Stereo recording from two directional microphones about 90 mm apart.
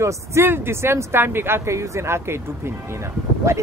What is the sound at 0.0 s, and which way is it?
Speech, 30° right (ahead or behind).